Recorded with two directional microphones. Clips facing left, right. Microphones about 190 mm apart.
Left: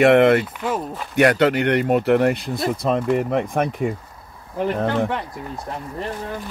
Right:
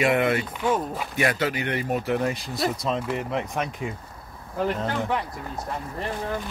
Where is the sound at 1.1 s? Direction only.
65° left (ahead or behind).